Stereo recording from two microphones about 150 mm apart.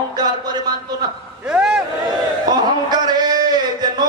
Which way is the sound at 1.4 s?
5° right (ahead or behind).